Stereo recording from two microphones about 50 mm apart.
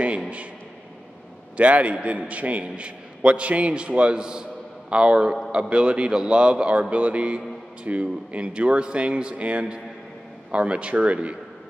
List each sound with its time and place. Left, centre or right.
1.6 s a man's voice: right